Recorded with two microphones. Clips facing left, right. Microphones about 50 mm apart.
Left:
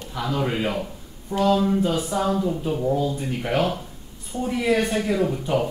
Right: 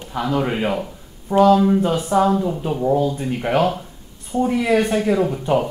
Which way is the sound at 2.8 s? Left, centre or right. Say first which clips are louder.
Right 6 dB; right.